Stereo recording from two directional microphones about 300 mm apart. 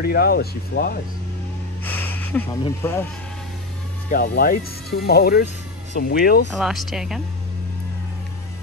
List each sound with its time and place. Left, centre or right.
0.0 s speech: left
1.9 s a sound: centre
2.6 s speech: centre
4.1 s speech: left
6.5 s speech: centre